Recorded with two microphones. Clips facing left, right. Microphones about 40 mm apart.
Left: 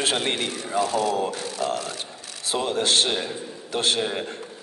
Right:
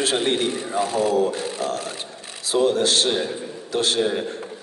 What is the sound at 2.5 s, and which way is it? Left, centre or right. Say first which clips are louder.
A man's voice: right 4 dB; left.